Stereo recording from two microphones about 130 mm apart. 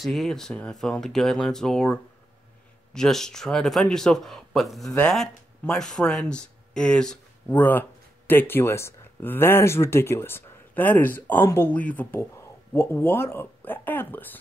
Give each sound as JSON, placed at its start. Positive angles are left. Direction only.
{"t": 0.0, "sound": "speech", "side_deg": 0}